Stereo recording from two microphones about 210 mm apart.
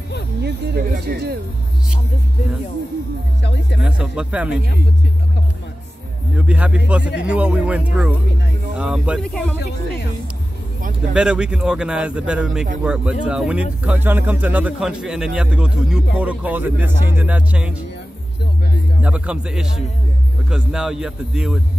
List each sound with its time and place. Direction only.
0.4 s speech: 50° right (ahead or behind)
3.8 s speech: 5° right (ahead or behind)
6.3 s speech: 5° right (ahead or behind)
11.1 s speech: 5° right (ahead or behind)
19.0 s speech: 5° right (ahead or behind)